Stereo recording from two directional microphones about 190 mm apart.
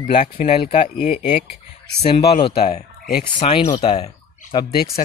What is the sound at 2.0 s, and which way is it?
Speech, 30° left (ahead or behind).